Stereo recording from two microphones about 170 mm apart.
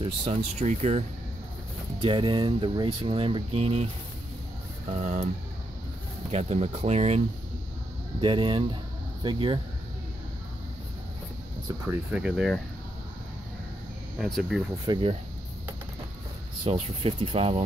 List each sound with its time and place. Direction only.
0.0 s speech: 35° right (ahead or behind)
2.0 s speech: 30° right (ahead or behind)
4.8 s speech: 45° right (ahead or behind)
6.3 s speech: 40° right (ahead or behind)
8.2 s speech: 30° right (ahead or behind)
12.1 s speech: 5° right (ahead or behind)
14.1 s speech: centre (ahead or behind)
14.9 s speech: 30° right (ahead or behind)
16.6 s speech: 35° right (ahead or behind)